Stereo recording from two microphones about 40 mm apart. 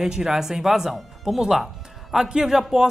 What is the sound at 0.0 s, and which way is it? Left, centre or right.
Speech, centre.